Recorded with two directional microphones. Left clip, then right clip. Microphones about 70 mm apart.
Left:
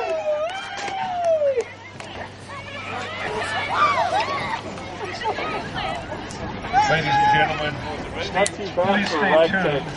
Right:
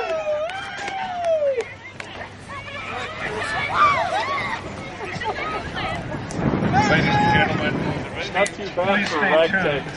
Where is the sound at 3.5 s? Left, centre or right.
Centre.